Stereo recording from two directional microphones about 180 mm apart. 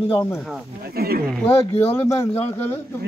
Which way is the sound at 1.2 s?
5° left (ahead or behind).